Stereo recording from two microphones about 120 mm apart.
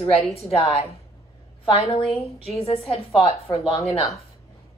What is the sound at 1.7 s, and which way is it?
A woman's voice, 50° left (ahead or behind).